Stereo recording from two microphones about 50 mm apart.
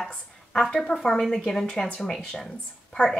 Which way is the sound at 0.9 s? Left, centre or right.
Centre.